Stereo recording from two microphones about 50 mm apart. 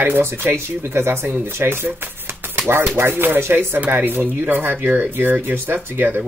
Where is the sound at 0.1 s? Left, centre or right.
Right.